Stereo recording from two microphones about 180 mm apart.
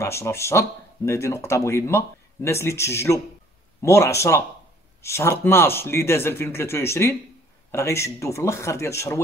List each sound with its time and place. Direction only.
0.0 s speech: 15° left (ahead or behind)